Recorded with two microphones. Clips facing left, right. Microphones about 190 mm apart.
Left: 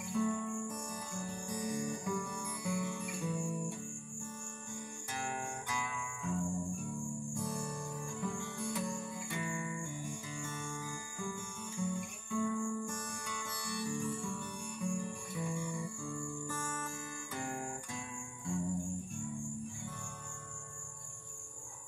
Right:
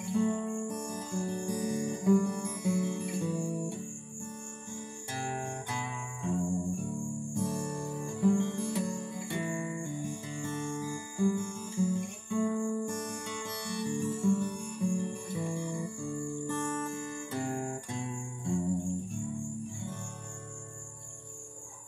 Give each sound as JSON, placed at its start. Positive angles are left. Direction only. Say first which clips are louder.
{"t": 0.0, "sound": "music", "louder": "right 5 dB", "side_deg": -30}
{"t": 5.7, "sound": "music", "louder": "right 2 dB", "side_deg": -30}